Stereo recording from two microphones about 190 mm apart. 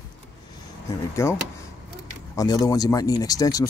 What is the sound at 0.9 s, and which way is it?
Speech, 15° left (ahead or behind).